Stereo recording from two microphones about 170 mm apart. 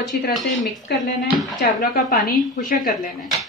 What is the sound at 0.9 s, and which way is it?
Speech, 75° left (ahead or behind).